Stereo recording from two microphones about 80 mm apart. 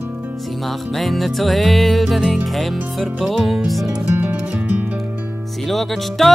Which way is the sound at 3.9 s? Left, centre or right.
Centre.